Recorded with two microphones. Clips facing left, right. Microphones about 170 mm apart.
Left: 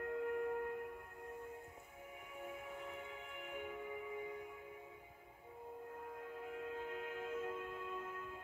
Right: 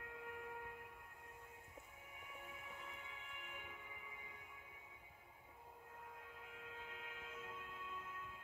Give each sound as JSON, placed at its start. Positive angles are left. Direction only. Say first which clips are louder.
{"t": 0.0, "sound": "music", "louder": "left 13 dB", "side_deg": 50}
{"t": 2.9, "sound": "music", "louder": "left 8 dB", "side_deg": 45}
{"t": 6.4, "sound": "music", "louder": "left 12 dB", "side_deg": 45}